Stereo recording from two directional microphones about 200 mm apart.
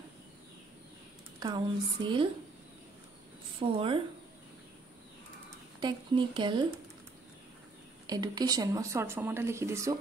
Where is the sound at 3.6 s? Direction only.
25° right (ahead or behind).